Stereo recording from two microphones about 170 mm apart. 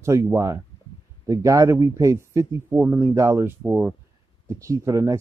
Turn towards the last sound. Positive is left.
turn(degrees=-20)  # may be behind; listen again after turning